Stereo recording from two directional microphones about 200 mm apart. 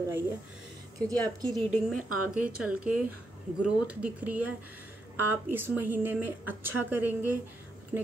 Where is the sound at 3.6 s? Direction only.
5° right (ahead or behind).